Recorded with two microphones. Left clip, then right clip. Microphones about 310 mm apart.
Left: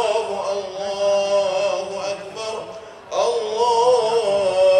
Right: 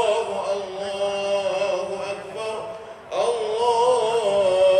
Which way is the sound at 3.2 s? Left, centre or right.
Left.